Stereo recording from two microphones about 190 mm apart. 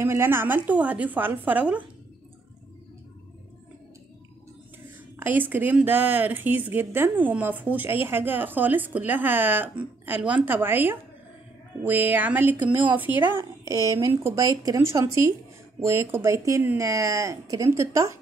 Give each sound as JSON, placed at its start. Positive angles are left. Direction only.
{"t": 0.0, "sound": "speech", "side_deg": -15}
{"t": 5.2, "sound": "speech", "side_deg": -10}